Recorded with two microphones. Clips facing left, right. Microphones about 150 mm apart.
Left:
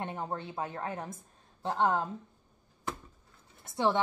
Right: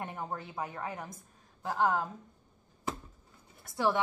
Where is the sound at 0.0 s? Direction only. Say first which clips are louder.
Left 2 dB; 25° left (ahead or behind).